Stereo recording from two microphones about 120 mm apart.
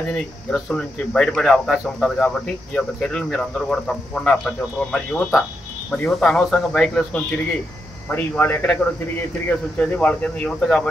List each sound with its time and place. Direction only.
0.1 s speech: 5° left (ahead or behind)